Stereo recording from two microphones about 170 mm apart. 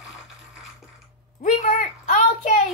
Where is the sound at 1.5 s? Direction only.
40° left (ahead or behind).